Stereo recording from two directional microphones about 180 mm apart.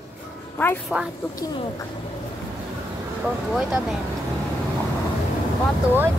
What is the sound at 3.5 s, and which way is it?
Speech, centre (ahead or behind).